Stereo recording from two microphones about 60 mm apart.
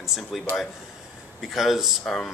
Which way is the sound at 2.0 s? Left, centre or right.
Centre.